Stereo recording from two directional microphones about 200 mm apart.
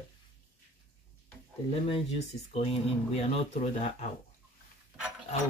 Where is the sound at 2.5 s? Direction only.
30° left (ahead or behind).